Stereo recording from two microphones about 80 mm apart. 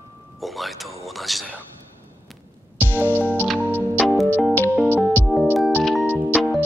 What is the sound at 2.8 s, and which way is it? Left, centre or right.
Music, right.